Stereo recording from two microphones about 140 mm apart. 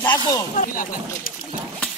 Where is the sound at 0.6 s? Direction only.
85° left.